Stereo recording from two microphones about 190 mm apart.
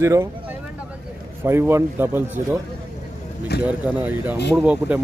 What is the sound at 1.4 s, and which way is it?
A man's voice, 15° right (ahead or behind).